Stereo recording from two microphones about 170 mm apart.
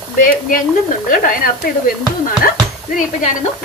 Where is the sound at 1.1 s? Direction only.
55° left (ahead or behind).